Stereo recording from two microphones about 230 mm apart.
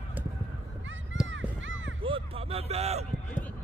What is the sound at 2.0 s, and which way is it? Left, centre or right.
Speech, right.